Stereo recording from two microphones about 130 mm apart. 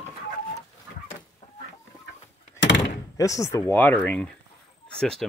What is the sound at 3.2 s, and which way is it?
Speech, 25° left (ahead or behind).